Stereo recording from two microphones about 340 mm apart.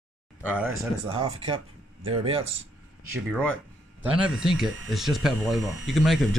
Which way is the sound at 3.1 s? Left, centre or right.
Centre.